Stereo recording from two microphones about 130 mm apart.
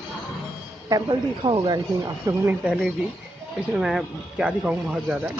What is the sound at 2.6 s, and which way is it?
Speech, 10° right (ahead or behind).